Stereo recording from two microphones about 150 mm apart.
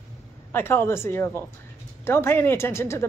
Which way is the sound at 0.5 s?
15° left (ahead or behind).